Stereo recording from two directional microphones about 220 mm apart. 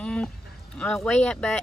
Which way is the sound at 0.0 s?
5° left (ahead or behind).